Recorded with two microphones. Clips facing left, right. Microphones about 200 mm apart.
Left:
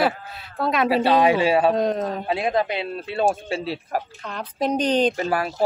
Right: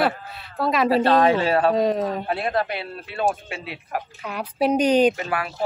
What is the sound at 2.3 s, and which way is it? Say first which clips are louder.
Speech: left 2 dB; 15° left (ahead or behind).